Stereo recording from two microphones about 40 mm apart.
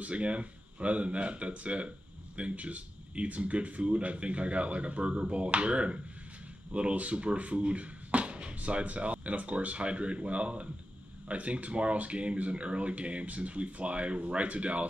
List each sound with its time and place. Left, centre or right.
0.0 s speech: right